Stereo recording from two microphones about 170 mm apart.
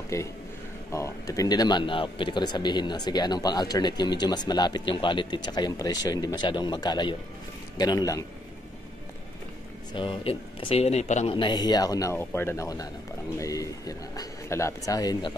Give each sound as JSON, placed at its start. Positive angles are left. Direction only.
{"t": 0.1, "sound": "a man's voice", "side_deg": 20}
{"t": 9.9, "sound": "a man's voice", "side_deg": 30}
{"t": 11.3, "sound": "speech", "side_deg": 25}